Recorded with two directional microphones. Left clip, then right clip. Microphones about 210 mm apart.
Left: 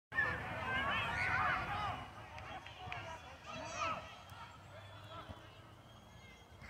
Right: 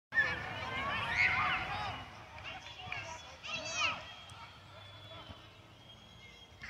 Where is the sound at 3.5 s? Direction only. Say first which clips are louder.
Right 6 dB; 50° left (ahead or behind).